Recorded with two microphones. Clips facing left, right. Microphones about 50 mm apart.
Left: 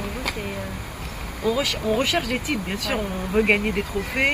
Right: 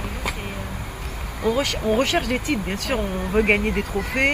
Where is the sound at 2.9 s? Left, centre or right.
Centre.